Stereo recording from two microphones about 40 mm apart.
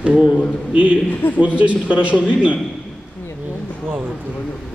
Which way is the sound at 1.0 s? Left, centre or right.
Left.